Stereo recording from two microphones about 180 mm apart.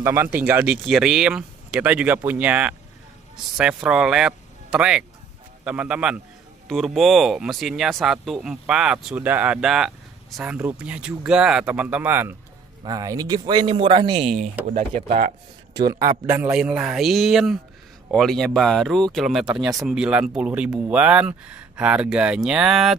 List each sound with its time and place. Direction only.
0.0 s speech: 15° right (ahead or behind)
14.7 s speech: 40° right (ahead or behind)
15.7 s speech: 20° right (ahead or behind); by 19.5 s centre (ahead or behind)
19.5 s speech: 20° right (ahead or behind)
19.8 s speech: 5° right (ahead or behind)